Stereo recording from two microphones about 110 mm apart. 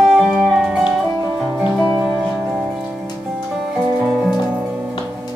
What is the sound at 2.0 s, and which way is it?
Music, 10° right (ahead or behind).